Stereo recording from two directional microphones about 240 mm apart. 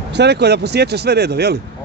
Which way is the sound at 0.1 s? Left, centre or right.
Right.